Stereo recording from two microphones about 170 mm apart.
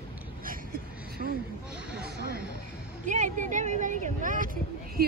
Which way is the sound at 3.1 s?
45° right (ahead or behind).